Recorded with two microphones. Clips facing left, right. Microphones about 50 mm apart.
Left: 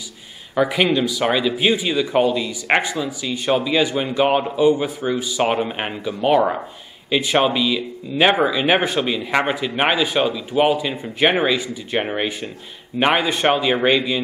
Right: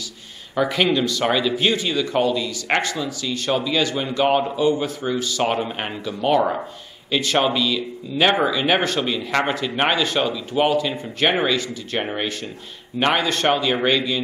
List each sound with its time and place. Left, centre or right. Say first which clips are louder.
0.6 s speech: left 2 dB; centre